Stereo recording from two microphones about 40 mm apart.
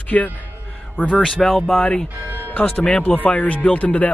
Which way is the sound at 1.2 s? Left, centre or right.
Centre.